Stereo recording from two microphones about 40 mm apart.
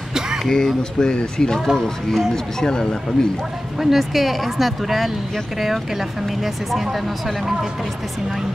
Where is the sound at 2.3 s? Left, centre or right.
Centre.